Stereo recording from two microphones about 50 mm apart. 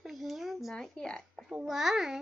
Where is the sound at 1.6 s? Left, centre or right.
Centre.